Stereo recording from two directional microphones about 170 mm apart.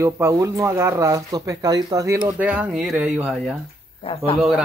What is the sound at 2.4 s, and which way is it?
Speech, 5° right (ahead or behind).